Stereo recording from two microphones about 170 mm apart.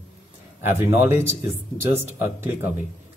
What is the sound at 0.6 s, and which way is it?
Speech, 15° right (ahead or behind).